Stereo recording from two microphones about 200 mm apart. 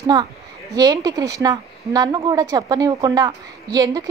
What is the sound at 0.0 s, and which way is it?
A woman's voice, 20° right (ahead or behind).